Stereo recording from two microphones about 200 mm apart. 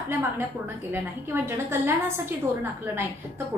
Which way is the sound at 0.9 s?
10° right (ahead or behind).